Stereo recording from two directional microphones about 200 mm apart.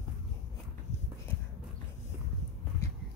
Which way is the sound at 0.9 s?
35° left (ahead or behind).